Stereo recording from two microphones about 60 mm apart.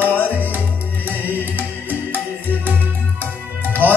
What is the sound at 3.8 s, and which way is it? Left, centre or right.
Music, right.